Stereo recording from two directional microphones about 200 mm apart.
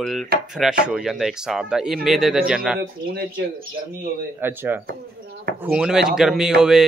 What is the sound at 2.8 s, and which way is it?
Speech, 50° right (ahead or behind).